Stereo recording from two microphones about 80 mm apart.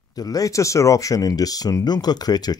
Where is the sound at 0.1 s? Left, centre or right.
Left.